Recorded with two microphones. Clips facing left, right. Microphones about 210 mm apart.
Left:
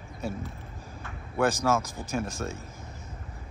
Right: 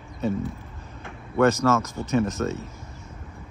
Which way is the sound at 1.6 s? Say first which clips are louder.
Right 4 dB; 15° left (ahead or behind).